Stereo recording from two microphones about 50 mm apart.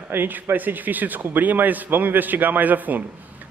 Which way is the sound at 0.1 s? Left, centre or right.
Right.